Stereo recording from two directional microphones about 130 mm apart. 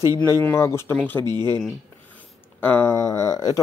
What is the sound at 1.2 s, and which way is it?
Speech, 35° right (ahead or behind).